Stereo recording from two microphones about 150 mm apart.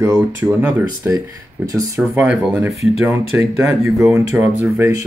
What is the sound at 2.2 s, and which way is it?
Speech, 5° right (ahead or behind).